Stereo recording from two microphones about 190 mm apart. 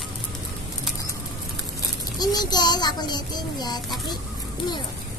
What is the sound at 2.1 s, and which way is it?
A child's voice, 20° left (ahead or behind).